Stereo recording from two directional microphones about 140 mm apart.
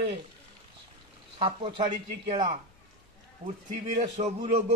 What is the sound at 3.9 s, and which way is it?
Speech, 55° right (ahead or behind).